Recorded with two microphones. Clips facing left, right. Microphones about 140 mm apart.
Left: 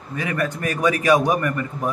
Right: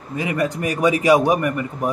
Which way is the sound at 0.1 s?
20° right (ahead or behind).